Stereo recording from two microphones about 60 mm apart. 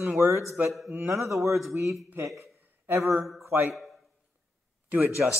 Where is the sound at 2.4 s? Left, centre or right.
Right.